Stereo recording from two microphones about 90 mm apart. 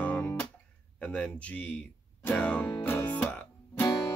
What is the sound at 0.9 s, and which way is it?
Speech, 15° left (ahead or behind).